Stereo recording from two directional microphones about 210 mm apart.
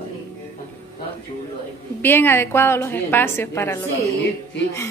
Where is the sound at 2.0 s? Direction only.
10° left (ahead or behind).